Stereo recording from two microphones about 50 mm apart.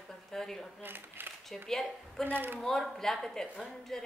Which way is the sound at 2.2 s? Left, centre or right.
Right.